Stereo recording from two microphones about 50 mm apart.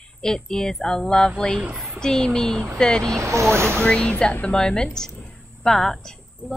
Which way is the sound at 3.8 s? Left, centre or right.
Left.